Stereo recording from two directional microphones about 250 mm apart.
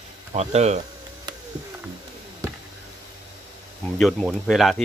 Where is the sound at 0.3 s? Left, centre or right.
Right.